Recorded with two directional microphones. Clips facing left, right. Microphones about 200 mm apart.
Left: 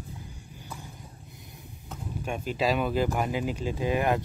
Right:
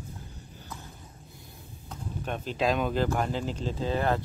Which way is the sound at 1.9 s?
10° left (ahead or behind).